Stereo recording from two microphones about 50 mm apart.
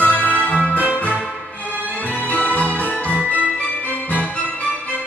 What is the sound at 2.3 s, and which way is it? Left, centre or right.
Music, left.